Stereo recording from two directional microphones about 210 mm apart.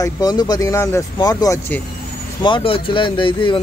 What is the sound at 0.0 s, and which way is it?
Speech, 20° left (ahead or behind).